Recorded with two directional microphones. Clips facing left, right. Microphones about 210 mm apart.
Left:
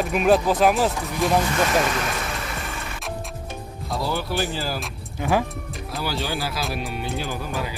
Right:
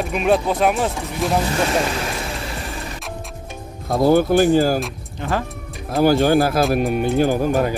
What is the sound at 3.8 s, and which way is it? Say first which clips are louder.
Speech: right 12 dB; 50° right (ahead or behind).